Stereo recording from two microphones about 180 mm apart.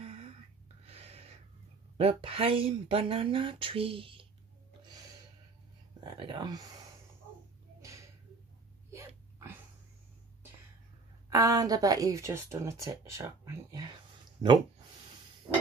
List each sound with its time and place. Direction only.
0.0 s a sound: 35° right (ahead or behind)
2.0 s speech: 30° right (ahead or behind)
6.0 s speech: 25° right (ahead or behind)
8.9 s hiccup: 15° right (ahead or behind)
11.2 s speech: 20° right (ahead or behind)